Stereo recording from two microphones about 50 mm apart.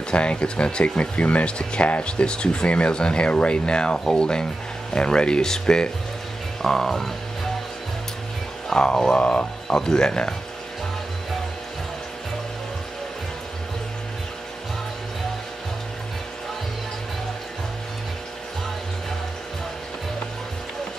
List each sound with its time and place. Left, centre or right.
0.1 s speech: left
8.7 s speech: centre